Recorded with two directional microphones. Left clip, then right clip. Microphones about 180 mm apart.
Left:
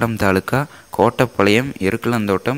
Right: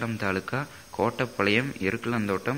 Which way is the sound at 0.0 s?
50° left (ahead or behind).